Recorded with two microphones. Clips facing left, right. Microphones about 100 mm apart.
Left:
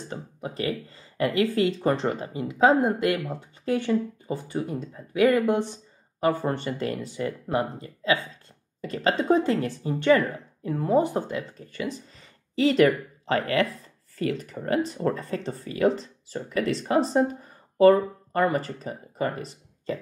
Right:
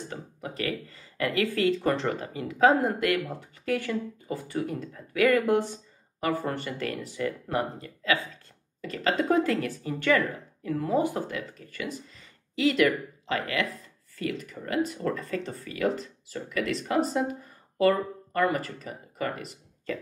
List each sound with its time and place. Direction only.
0.1 s speech: 25° left (ahead or behind)